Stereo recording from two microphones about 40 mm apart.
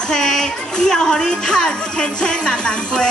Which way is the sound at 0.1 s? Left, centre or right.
Centre.